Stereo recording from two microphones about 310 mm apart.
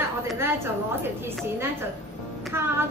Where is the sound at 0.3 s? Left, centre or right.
Centre.